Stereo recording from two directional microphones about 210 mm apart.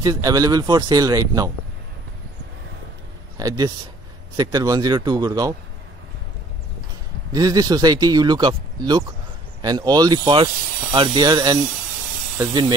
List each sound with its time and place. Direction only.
0.0 s speech: 20° right (ahead or behind)
3.3 s speech: 15° right (ahead or behind)
7.3 s speech: 20° right (ahead or behind)